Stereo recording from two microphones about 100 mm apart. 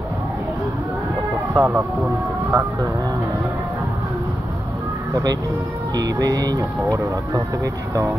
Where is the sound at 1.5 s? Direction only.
30° right (ahead or behind).